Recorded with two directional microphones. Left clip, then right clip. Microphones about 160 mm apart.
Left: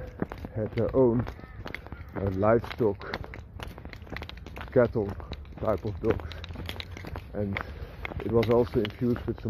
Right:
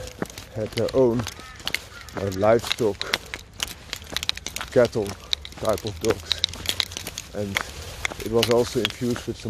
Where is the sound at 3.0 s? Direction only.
35° right (ahead or behind).